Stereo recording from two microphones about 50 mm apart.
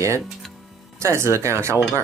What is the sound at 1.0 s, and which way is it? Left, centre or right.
Speech, right.